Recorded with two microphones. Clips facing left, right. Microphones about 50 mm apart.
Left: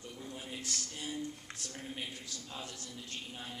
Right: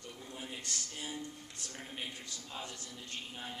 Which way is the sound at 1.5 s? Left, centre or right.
Left.